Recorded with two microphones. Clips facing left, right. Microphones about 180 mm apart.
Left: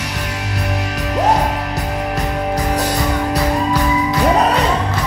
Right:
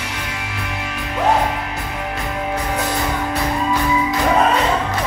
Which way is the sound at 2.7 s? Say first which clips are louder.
Left 3 dB; 40° left (ahead or behind).